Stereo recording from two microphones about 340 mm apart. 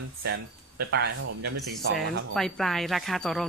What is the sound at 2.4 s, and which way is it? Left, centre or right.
Speech, centre.